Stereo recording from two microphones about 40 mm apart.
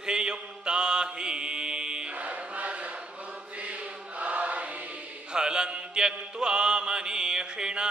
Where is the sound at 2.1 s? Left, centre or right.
Right.